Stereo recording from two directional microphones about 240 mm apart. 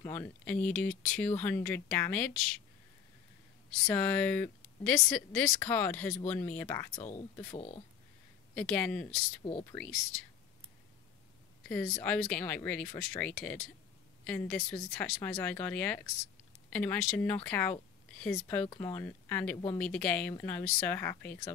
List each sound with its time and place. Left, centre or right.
0.0 s speech: centre
3.8 s speech: centre
7.0 s speech: left
8.5 s speech: centre
9.4 s speech: left
9.7 s speech: centre
11.7 s speech: centre